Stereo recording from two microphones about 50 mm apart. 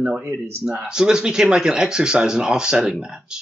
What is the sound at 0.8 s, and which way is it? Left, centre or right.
Speech, centre.